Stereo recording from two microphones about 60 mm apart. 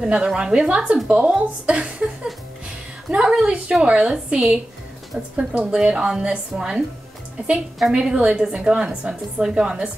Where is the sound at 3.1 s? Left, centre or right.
Centre.